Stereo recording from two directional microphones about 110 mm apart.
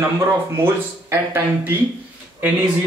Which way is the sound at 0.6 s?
20° right (ahead or behind).